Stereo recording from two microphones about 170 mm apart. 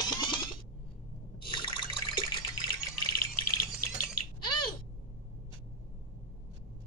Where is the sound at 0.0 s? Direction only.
25° left (ahead or behind).